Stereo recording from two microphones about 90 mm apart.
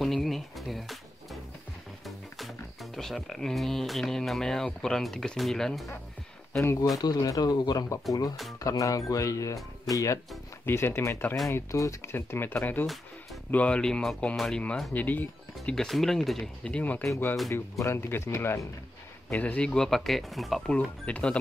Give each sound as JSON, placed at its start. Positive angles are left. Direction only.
{"t": 0.0, "sound": "music", "side_deg": 0}
{"t": 2.0, "sound": "speech", "side_deg": 0}
{"t": 6.6, "sound": "speech", "side_deg": 30}
{"t": 7.0, "sound": "speech", "side_deg": 45}
{"t": 15.0, "sound": "speech", "side_deg": 20}
{"t": 15.7, "sound": "speech", "side_deg": 5}
{"t": 17.5, "sound": "speech", "side_deg": 35}
{"t": 19.3, "sound": "speech", "side_deg": 15}
{"t": 21.0, "sound": "speech", "side_deg": 15}